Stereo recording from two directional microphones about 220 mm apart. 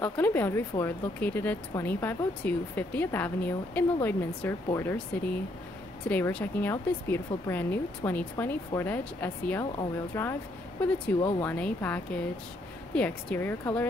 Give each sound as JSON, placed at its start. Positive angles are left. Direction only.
{"t": 0.0, "sound": "speech", "side_deg": 5}
{"t": 6.0, "sound": "speech", "side_deg": 5}
{"t": 11.4, "sound": "speech", "side_deg": 5}